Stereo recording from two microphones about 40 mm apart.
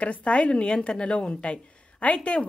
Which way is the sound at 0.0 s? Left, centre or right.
Left.